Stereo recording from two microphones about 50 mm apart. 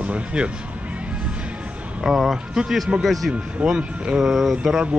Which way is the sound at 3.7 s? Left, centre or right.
Centre.